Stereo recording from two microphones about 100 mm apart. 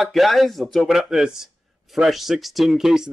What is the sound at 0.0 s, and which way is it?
Speech, centre (ahead or behind).